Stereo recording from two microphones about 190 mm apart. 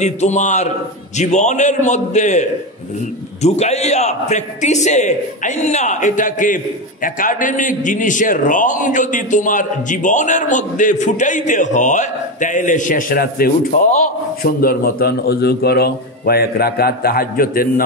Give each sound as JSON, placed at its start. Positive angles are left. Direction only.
{"t": 0.0, "sound": "a man's voice", "side_deg": 40}
{"t": 3.4, "sound": "a man's voice", "side_deg": 35}